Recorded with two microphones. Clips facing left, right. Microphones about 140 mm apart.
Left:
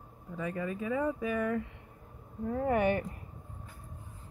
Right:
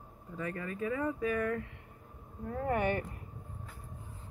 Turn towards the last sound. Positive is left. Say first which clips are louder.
# left 3 dB
turn(degrees=20)  # may be behind; listen again after turning